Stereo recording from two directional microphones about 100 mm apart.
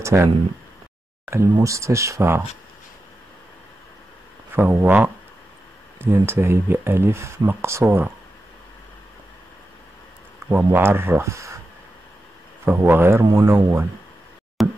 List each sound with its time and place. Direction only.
0.0 s speech: 30° right (ahead or behind)
1.3 s speech: 30° right (ahead or behind)
4.5 s speech: 20° right (ahead or behind)
10.5 s speech: 25° right (ahead or behind)
12.6 s speech: 20° right (ahead or behind)
13.2 s speech: 35° right (ahead or behind)
13.5 s speech: 25° right (ahead or behind)
14.6 s knock: centre (ahead or behind)